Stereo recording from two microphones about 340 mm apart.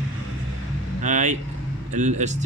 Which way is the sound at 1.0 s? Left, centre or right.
Right.